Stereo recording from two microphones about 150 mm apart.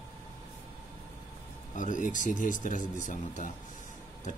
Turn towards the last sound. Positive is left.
turn(degrees=60)  # may be behind; listen again after turning